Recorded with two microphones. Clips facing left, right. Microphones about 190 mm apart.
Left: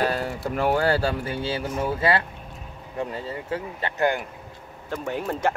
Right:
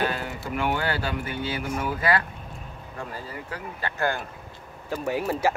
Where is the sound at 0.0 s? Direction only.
35° left (ahead or behind).